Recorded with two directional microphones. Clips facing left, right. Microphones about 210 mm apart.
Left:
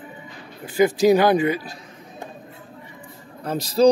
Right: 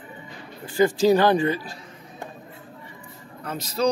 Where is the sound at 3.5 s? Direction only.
35° left (ahead or behind).